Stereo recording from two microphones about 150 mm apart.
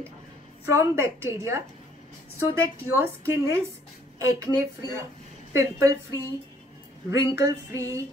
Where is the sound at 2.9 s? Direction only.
15° right (ahead or behind).